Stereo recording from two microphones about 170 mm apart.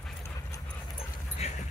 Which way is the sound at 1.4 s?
40° left (ahead or behind).